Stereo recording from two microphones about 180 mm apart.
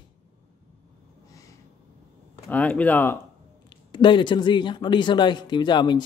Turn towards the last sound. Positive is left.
turn(degrees=25)  # may be behind; listen again after turning